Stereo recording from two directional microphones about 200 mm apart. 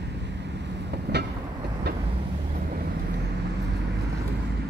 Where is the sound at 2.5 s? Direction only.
45° right (ahead or behind).